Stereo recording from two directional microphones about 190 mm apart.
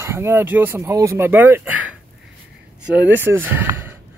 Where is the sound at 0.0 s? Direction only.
15° right (ahead or behind).